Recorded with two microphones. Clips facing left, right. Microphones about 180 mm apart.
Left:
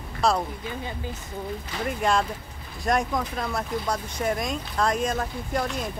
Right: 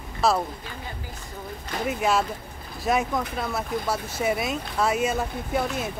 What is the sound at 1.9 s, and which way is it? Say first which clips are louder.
Speech: even; 5° right (ahead or behind).